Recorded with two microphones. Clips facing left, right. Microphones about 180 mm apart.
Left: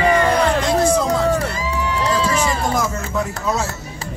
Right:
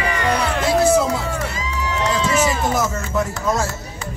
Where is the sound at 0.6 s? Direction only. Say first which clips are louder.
Right 1 dB; 5° right (ahead or behind).